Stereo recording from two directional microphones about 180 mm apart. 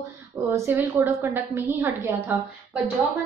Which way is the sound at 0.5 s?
10° right (ahead or behind).